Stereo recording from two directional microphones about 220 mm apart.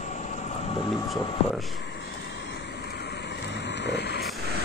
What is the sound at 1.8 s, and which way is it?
Vehicle, 50° left (ahead or behind).